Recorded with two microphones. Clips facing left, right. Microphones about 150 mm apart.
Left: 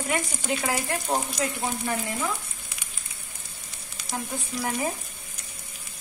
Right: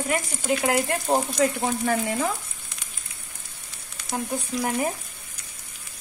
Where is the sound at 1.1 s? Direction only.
25° right (ahead or behind).